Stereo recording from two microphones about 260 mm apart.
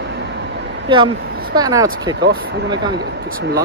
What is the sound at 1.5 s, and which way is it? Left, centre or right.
Speech, centre.